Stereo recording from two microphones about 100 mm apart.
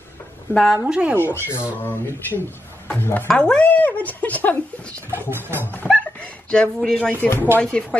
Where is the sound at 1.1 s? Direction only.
20° left (ahead or behind).